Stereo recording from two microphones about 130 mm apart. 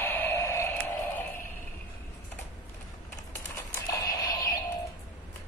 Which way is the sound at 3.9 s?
30° left (ahead or behind).